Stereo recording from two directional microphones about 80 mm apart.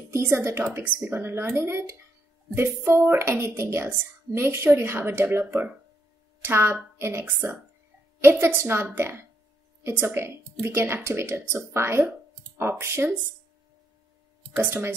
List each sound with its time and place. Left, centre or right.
0.1 s a woman's voice: right
14.6 s a woman's voice: right